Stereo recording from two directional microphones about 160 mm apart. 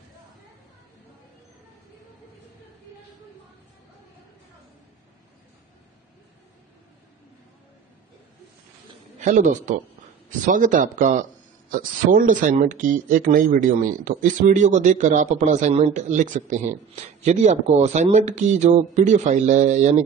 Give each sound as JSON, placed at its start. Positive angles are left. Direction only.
{"t": 9.2, "sound": "a man's voice", "side_deg": -50}